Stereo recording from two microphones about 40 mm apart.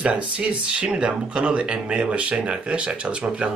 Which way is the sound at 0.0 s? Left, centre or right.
Right.